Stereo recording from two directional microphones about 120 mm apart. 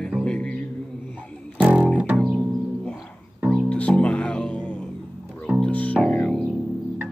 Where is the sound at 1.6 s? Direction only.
10° right (ahead or behind).